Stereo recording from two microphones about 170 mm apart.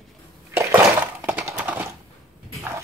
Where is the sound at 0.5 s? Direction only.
15° right (ahead or behind).